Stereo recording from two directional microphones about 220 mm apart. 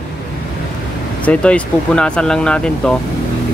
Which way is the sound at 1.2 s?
5° left (ahead or behind).